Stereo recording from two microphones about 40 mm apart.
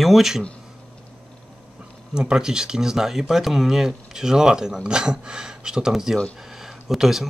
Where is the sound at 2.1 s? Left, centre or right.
Centre.